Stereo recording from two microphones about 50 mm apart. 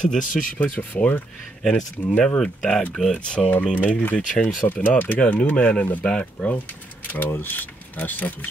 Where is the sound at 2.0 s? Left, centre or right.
Left.